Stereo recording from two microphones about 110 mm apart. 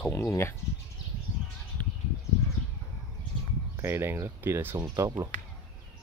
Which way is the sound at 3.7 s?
20° right (ahead or behind).